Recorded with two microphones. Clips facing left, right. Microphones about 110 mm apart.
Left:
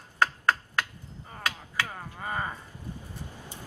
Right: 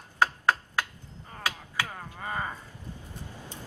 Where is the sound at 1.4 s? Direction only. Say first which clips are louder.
Even; 15° right (ahead or behind).